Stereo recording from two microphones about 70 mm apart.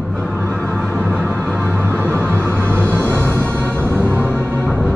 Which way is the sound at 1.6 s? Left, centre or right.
Right.